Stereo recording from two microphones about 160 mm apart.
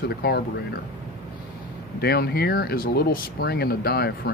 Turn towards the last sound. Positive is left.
turn(degrees=75)  # may be behind; listen again after turning